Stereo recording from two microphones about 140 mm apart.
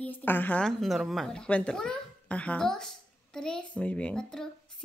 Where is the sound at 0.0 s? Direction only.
15° left (ahead or behind).